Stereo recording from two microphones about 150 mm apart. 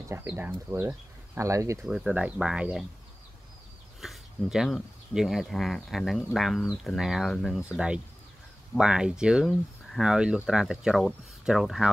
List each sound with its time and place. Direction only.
0.1 s speech: 15° right (ahead or behind)
1.8 s speech: 5° right (ahead or behind)
4.0 s speech: centre (ahead or behind)